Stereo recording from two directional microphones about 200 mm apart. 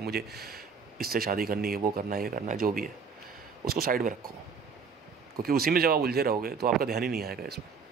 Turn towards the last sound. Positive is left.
turn(degrees=-50)  # may be behind; listen again after turning